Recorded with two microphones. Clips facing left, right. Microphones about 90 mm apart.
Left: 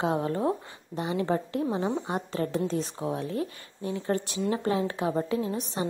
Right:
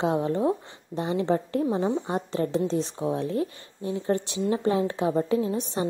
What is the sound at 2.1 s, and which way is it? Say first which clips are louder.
A woman's voice: right 3 dB; 30° right (ahead or behind).